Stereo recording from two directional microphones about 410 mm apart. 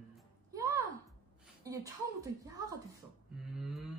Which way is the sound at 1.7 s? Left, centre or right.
Centre.